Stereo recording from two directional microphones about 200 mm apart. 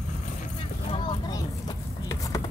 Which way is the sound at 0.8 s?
25° left (ahead or behind).